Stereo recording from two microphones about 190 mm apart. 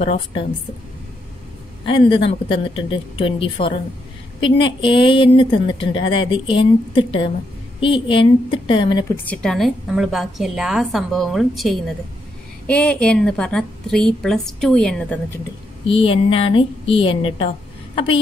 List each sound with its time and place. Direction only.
0.0 s a woman's voice: 30° left (ahead or behind)
1.9 s a woman's voice: 25° left (ahead or behind)
9.1 s a woman's voice: 10° left (ahead or behind)
15.9 s a woman's voice: 30° left (ahead or behind)